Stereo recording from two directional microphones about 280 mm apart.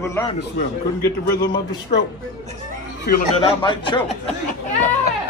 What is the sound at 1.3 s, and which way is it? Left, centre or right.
Speech, centre.